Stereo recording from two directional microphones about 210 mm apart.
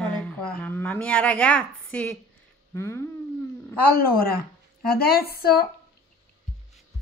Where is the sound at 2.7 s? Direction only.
15° left (ahead or behind).